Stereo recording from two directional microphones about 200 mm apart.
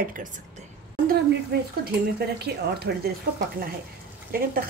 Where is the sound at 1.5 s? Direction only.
55° right (ahead or behind).